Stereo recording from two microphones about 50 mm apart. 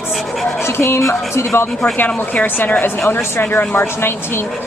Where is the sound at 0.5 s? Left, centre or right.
Left.